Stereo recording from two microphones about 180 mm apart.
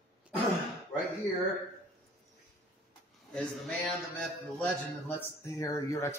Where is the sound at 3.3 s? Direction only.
Centre (ahead or behind); by 6.2 s 15° left (ahead or behind).